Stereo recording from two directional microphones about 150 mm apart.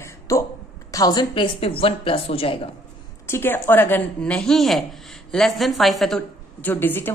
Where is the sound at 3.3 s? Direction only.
15° left (ahead or behind).